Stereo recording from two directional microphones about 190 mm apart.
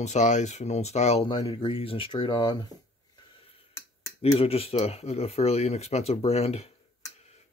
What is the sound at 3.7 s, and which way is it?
Finger snapping, 15° left (ahead or behind).